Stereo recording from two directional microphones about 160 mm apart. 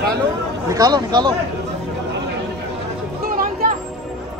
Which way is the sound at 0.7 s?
25° right (ahead or behind).